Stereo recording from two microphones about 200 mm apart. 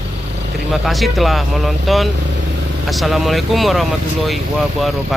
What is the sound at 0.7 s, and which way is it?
Speech, centre (ahead or behind).